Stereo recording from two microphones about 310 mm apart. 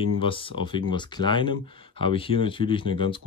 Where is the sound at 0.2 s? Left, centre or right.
Centre.